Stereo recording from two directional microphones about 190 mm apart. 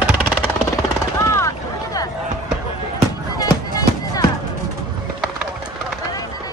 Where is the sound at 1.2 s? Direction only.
15° left (ahead or behind).